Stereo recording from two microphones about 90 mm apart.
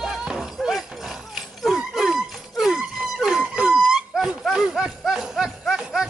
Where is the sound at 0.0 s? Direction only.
5° right (ahead or behind).